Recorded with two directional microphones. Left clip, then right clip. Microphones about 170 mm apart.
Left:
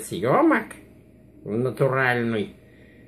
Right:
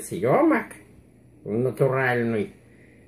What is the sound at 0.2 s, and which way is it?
Speech, centre (ahead or behind).